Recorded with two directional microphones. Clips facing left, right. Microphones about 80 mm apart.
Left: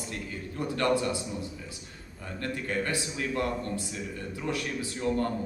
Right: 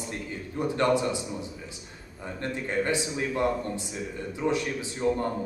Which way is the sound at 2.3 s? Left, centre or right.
Right.